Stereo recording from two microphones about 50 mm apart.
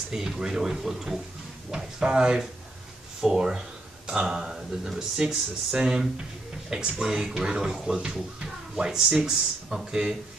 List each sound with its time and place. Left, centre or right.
0.1 s speech: centre